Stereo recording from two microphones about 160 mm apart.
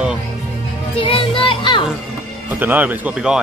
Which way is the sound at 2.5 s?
10° right (ahead or behind).